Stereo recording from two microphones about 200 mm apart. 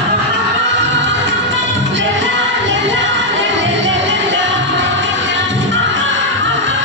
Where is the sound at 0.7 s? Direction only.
65° right (ahead or behind).